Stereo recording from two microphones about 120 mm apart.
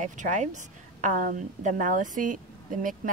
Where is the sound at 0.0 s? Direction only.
90° right.